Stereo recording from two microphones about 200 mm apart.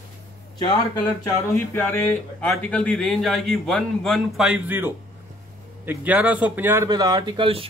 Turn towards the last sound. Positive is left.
turn(degrees=-25)  # may be behind; listen again after turning